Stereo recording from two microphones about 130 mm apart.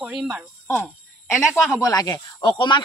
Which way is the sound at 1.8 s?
30° left (ahead or behind).